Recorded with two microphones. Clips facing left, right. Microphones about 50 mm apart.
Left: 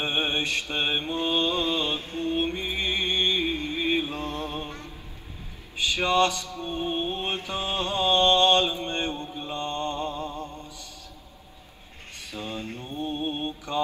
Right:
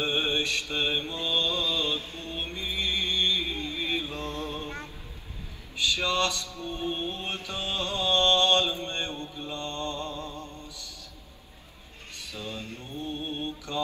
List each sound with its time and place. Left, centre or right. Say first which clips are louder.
0.0 s mantra: left 1 dB; left
4.6 s mantra: right 1 dB; right
5.8 s mantra: left 4 dB; left
10.7 s mantra: left 1 dB; right
12.3 s a sound: left 4 dB; left
12.8 s mantra: left 5 dB; left